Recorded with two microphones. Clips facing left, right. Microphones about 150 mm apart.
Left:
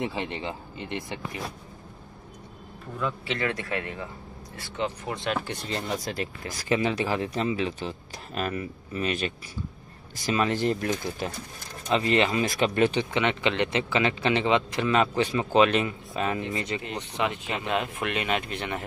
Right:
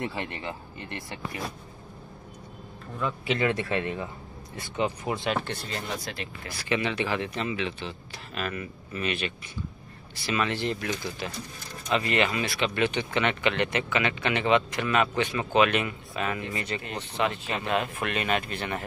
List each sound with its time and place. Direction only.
0.0 s speech: 20° left (ahead or behind)
3.3 s a man's voice: 20° right (ahead or behind)
5.1 s speech: centre (ahead or behind)
6.0 s speech: 40° left (ahead or behind)
11.9 s speech: 30° left (ahead or behind)
12.4 s speech: 45° left (ahead or behind)
13.1 s speech: 20° left (ahead or behind)